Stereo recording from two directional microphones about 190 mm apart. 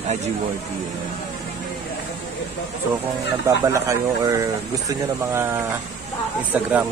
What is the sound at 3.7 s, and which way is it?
Speech, 15° right (ahead or behind).